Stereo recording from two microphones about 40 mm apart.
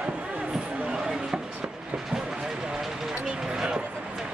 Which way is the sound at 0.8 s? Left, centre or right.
Centre.